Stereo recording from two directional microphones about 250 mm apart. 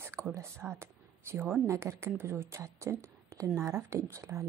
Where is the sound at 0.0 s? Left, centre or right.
Centre.